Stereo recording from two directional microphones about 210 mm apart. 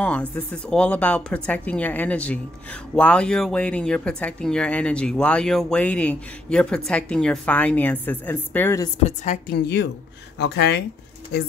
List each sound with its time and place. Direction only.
0.0 s speech: 5° left (ahead or behind)
9.0 s a woman's voice: 35° left (ahead or behind)
10.4 s speech: 55° left (ahead or behind)